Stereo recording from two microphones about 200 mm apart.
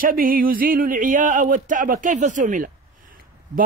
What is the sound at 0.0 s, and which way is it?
Speech, 45° right (ahead or behind).